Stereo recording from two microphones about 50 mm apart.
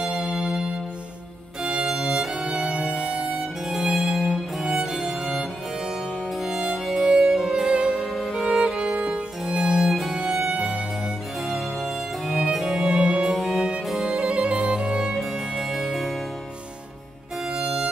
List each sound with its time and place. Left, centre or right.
0.0 s music: centre
1.6 s violin: centre
1.9 s music: centre
7.9 s music: centre
8.5 s violin: centre
11.4 s music: centre
13.3 s music: centre
14.0 s music: centre
17.6 s music: centre